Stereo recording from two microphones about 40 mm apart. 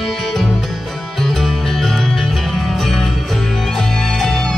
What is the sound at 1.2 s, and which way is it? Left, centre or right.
Music, centre.